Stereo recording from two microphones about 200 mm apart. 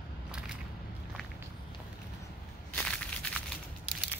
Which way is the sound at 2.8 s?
5° left (ahead or behind).